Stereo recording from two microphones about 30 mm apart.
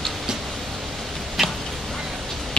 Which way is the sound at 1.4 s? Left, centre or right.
Centre.